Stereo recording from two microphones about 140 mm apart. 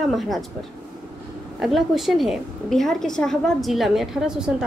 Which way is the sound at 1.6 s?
Centre (ahead or behind).